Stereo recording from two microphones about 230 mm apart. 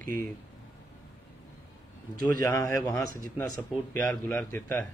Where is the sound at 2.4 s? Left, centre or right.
Centre.